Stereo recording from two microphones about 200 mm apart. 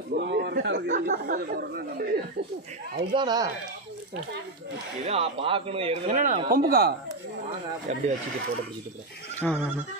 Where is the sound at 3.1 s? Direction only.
20° right (ahead or behind).